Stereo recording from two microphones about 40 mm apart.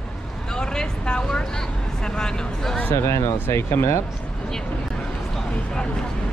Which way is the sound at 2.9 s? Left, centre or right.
Left.